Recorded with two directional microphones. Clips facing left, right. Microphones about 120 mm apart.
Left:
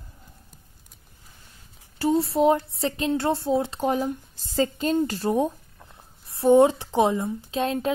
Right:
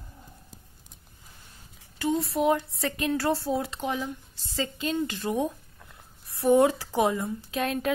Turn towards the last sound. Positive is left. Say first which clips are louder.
# left 3 dB
turn(degrees=30)  # may be behind; listen again after turning